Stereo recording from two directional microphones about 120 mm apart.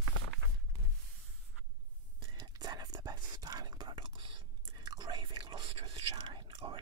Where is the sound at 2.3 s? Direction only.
35° right (ahead or behind).